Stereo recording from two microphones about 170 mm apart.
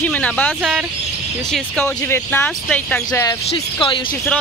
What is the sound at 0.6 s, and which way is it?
Speech, 5° right (ahead or behind).